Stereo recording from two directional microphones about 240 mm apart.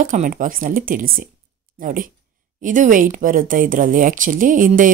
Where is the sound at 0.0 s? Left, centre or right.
Right.